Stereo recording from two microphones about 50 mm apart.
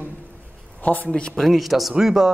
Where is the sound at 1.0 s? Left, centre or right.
Centre.